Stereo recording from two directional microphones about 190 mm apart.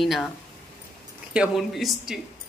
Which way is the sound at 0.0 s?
Centre (ahead or behind).